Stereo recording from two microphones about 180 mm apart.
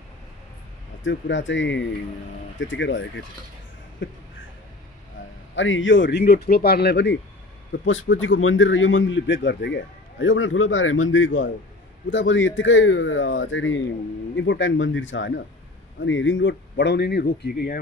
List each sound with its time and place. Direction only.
1.0 s a man's voice: 90° left
5.6 s speech: 90° left; by 7.2 s 70° left (ahead or behind)
7.8 s a man's voice: 90° left; by 17.7 s 55° left (ahead or behind)